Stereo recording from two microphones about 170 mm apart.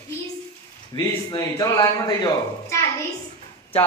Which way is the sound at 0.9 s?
20° left (ahead or behind).